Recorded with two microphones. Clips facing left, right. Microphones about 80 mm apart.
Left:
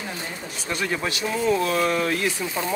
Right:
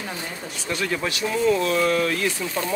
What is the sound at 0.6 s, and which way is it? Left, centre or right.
Speech, left.